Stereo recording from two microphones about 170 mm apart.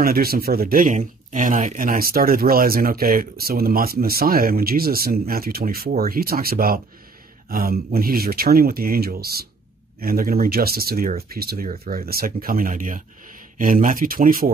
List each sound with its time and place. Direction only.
0.0 s speech: 60° right (ahead or behind)